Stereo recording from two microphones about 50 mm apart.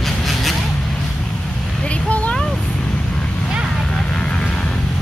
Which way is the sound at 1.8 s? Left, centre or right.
Left.